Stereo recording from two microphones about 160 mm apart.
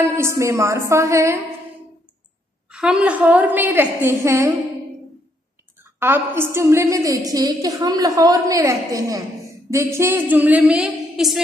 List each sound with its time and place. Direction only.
0.0 s a woman's voice: 15° right (ahead or behind)
2.7 s a woman's voice: 5° right (ahead or behind)
5.9 s a woman's voice: 15° right (ahead or behind)